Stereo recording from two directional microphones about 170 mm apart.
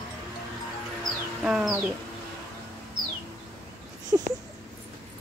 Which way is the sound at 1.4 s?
5° right (ahead or behind).